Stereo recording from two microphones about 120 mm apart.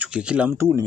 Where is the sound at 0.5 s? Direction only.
20° right (ahead or behind).